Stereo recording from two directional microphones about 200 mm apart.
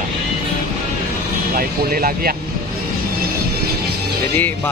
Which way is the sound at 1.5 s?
45° right (ahead or behind).